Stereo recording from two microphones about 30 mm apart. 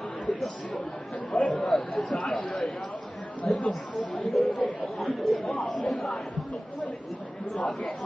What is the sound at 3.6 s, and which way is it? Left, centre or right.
Chatter, left.